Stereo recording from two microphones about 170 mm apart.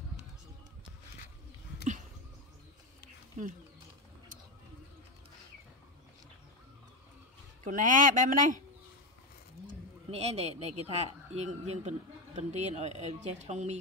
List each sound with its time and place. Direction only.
7.6 s speech: 50° right (ahead or behind)
10.1 s speech: 40° right (ahead or behind)